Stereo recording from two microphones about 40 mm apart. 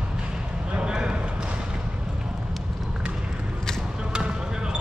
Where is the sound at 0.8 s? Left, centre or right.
Centre.